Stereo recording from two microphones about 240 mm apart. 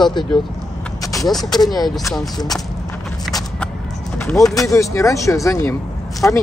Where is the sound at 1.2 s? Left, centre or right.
Centre.